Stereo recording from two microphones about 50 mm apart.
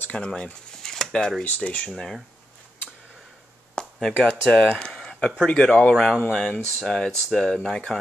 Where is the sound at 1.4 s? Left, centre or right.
Left.